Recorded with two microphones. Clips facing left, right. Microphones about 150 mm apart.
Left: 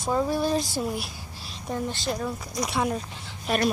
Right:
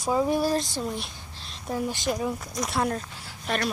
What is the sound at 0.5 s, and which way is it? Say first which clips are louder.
Speech: left 1 dB; 5° left (ahead or behind).